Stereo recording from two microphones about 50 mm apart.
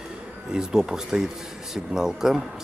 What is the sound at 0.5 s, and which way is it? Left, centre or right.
Speech, centre.